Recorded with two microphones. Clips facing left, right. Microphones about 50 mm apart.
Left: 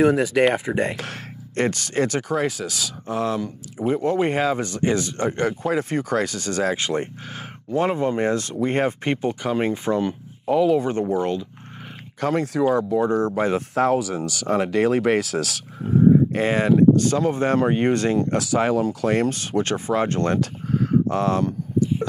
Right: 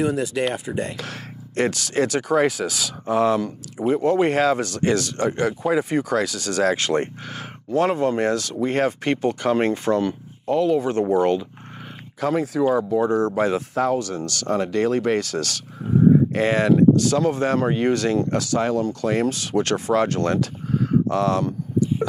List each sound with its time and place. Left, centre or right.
0.0 s speech: left
1.6 s speech: centre
4.3 s speech: centre
5.4 s speech: centre
6.1 s speech: centre
9.8 s a sound: centre
10.5 s speech: centre
13.9 s speech: centre
16.9 s speech: left
18.4 s speech: centre
19.2 s speech: left
19.6 s speech: centre
20.2 s speech: left
21.1 s speech: centre